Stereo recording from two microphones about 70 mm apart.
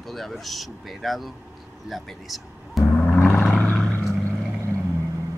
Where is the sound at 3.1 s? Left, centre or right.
Left.